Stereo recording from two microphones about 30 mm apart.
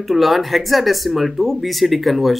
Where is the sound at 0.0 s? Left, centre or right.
Centre.